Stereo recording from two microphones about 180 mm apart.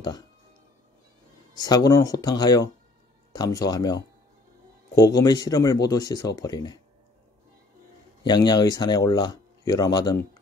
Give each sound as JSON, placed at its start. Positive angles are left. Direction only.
{"t": 1.6, "sound": "speech", "side_deg": 20}
{"t": 8.2, "sound": "speech", "side_deg": 25}